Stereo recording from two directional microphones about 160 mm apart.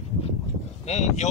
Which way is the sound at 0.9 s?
45° left (ahead or behind).